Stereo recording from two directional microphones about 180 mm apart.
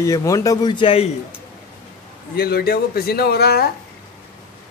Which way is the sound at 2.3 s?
60° left (ahead or behind).